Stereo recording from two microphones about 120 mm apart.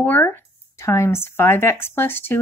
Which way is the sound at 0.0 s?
15° left (ahead or behind).